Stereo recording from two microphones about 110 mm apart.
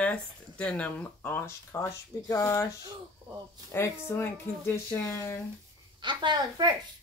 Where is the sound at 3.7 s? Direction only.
20° left (ahead or behind).